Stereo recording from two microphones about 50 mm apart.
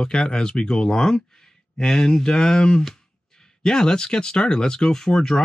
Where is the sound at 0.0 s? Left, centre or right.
Centre.